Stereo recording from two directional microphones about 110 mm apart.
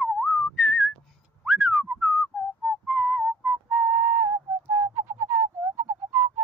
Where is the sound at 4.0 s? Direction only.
25° right (ahead or behind).